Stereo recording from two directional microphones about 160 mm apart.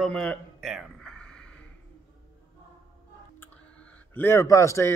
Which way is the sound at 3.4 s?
10° left (ahead or behind).